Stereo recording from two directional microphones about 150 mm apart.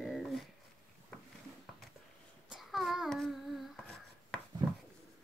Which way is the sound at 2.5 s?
Centre (ahead or behind).